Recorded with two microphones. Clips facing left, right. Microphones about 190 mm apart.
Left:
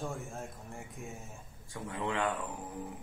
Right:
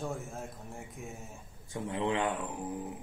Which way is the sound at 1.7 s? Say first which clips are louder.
Right 4 dB; 20° right (ahead or behind).